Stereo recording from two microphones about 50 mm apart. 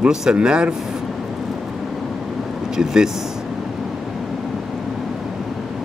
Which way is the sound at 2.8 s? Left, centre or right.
Centre.